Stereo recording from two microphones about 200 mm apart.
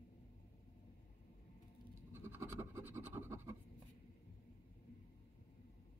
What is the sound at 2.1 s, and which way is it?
Scratch, 10° right (ahead or behind).